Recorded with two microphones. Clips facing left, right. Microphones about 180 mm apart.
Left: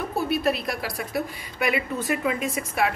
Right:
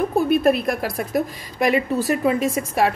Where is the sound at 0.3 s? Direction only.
50° right (ahead or behind).